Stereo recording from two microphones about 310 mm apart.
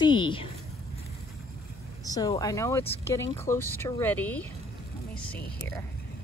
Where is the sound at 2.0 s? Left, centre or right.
Centre.